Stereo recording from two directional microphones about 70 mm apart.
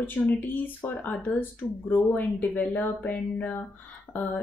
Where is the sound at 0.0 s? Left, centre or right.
Left.